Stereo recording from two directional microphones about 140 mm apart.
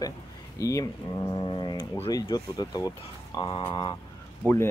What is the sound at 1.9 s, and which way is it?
Speech, 25° left (ahead or behind).